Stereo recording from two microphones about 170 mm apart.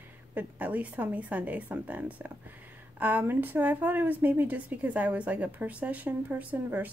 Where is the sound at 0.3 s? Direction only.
10° right (ahead or behind).